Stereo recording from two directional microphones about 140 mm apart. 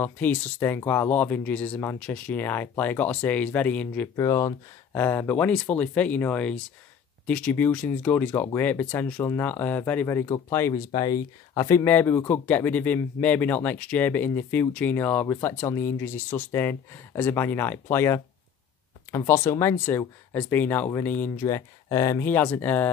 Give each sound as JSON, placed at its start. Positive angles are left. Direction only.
{"t": 0.0, "sound": "speech", "side_deg": 15}
{"t": 4.2, "sound": "speech", "side_deg": 25}
{"t": 11.8, "sound": "speech", "side_deg": 15}
{"t": 21.5, "sound": "speech", "side_deg": 25}